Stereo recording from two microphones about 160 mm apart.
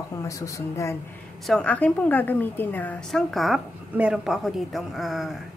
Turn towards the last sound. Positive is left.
turn(degrees=0)  # may be behind; listen again after turning